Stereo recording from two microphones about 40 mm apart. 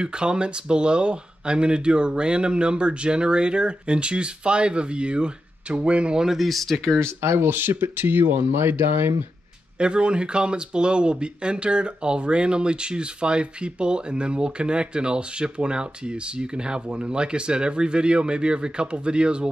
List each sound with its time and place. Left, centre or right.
0.0 s speech: right
6.3 s speech: centre
7.2 s speech: right
9.8 s speech: right